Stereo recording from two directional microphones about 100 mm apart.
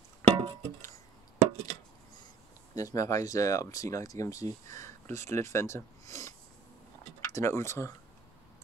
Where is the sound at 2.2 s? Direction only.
35° left (ahead or behind).